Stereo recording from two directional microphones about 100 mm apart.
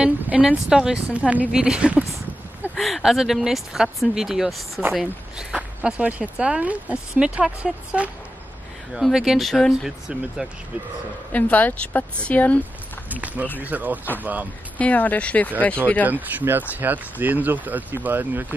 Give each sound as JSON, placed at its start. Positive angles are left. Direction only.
{"t": 0.0, "sound": "speech", "side_deg": -10}
{"t": 2.7, "sound": "speech", "side_deg": 0}
{"t": 11.3, "sound": "a woman's voice", "side_deg": 15}
{"t": 13.1, "sound": "speech", "side_deg": -15}
{"t": 14.8, "sound": "a woman's voice", "side_deg": 15}
{"t": 16.1, "sound": "speech", "side_deg": -15}